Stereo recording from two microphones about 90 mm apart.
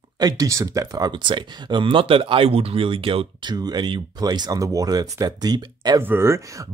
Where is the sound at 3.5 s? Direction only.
50° right (ahead or behind).